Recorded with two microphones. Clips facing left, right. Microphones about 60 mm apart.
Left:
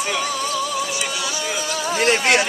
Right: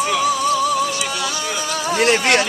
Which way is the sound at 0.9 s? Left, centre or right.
Centre.